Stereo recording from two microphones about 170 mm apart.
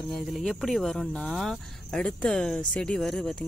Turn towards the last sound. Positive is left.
turn(degrees=0)  # may be behind; listen again after turning